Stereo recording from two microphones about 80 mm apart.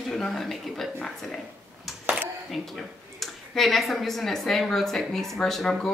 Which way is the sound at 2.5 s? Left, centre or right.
Centre.